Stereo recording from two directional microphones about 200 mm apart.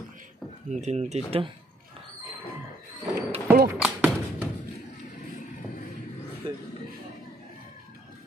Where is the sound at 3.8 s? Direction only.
5° right (ahead or behind).